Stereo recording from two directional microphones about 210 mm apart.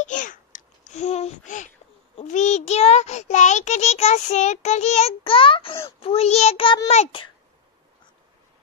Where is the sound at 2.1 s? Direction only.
35° left (ahead or behind).